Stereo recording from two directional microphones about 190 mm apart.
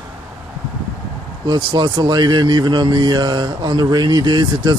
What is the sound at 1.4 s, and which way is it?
A man's voice, 25° right (ahead or behind).